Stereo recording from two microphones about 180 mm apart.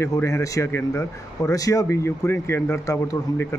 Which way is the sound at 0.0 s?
15° left (ahead or behind).